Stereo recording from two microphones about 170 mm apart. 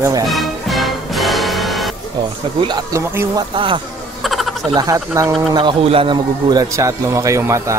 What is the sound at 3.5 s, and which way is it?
Speech, 30° right (ahead or behind).